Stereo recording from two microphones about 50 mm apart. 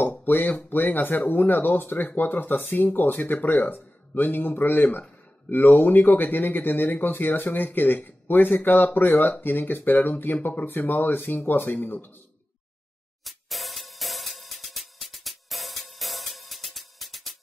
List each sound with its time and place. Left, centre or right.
0.0 s speech: left
13.2 s music: centre